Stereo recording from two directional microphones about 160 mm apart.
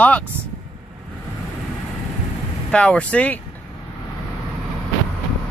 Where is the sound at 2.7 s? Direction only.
5° left (ahead or behind).